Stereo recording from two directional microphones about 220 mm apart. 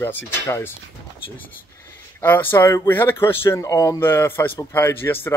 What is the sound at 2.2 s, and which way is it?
Speech, 10° left (ahead or behind).